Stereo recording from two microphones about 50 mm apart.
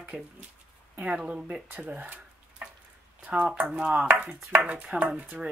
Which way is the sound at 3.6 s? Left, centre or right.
Right.